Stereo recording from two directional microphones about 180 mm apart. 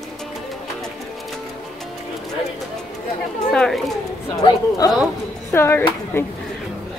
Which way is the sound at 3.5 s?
Centre (ahead or behind).